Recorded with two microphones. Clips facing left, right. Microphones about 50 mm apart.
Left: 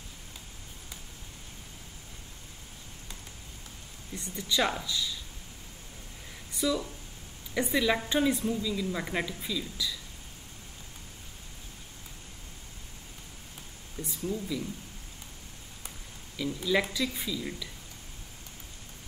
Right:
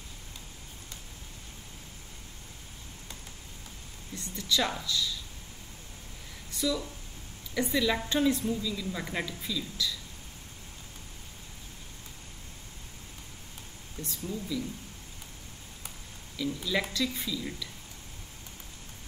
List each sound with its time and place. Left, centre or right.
4.1 s speech: centre
6.5 s a woman's voice: centre
13.9 s a woman's voice: centre
16.4 s a woman's voice: centre